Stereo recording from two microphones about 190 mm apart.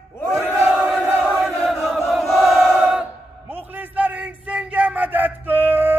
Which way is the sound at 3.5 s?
10° right (ahead or behind).